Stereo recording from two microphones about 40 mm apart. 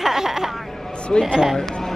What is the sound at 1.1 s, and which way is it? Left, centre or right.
Speech, centre.